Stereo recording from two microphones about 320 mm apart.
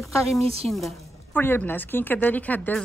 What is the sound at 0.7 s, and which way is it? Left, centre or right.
Speech, centre.